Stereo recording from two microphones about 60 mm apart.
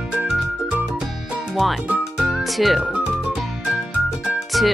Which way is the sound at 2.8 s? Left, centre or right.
Centre.